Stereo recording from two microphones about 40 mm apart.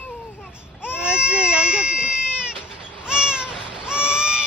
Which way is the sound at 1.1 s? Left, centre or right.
Right.